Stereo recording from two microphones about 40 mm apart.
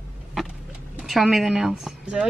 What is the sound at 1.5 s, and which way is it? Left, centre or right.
Speech, centre.